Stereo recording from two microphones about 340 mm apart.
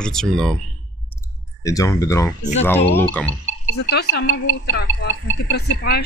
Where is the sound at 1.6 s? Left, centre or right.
Centre.